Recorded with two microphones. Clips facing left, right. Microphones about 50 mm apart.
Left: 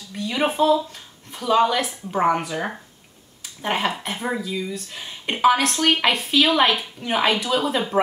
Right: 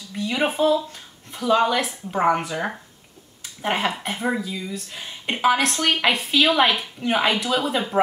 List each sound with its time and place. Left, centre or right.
0.1 s speech: centre